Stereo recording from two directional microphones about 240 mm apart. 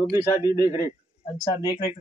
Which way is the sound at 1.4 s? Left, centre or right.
Centre.